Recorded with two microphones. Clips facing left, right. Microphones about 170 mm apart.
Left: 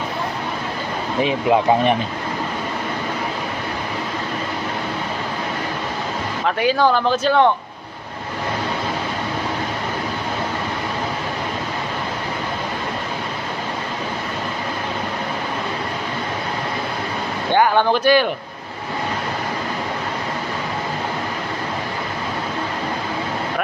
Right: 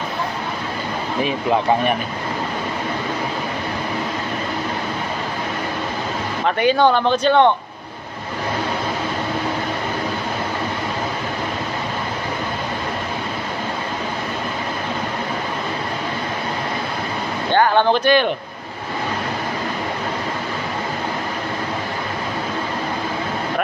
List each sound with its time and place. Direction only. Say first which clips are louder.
1.2 s speech: left 3 dB; 20° left (ahead or behind)
6.4 s speech: right 2 dB; centre (ahead or behind)
17.5 s speech: even; 10° left (ahead or behind)